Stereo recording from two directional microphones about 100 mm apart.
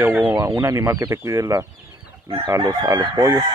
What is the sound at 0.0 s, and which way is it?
Speech, 20° right (ahead or behind).